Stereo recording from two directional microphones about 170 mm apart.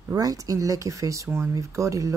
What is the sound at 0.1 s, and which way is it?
A woman's voice, 20° right (ahead or behind).